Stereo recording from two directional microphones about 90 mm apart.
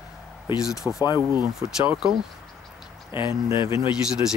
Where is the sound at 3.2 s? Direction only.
65° left (ahead or behind).